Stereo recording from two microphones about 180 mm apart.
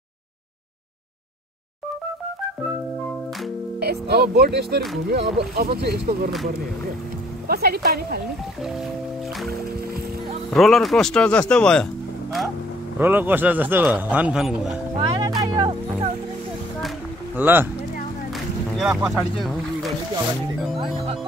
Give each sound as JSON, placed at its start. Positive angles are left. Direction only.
{"t": 3.8, "sound": "speech", "side_deg": -60}
{"t": 7.4, "sound": "speech", "side_deg": -60}
{"t": 10.5, "sound": "speech", "side_deg": 0}
{"t": 13.0, "sound": "a man's voice", "side_deg": -10}
{"t": 15.0, "sound": "music", "side_deg": -30}
{"t": 17.4, "sound": "a man's voice", "side_deg": -10}
{"t": 18.3, "sound": "boat", "side_deg": 0}
{"t": 19.1, "sound": "speech", "side_deg": 0}